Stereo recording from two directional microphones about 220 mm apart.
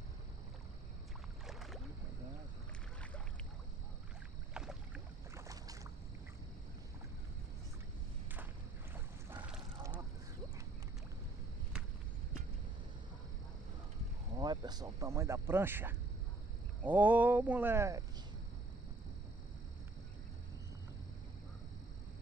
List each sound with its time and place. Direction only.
1.5 s rowboat: centre (ahead or behind)
4.6 s boat: 5° right (ahead or behind)
8.9 s boat: 10° right (ahead or behind)
14.3 s speech: 20° right (ahead or behind)